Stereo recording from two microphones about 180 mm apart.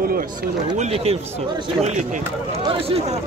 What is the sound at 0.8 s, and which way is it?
Speech, 35° right (ahead or behind).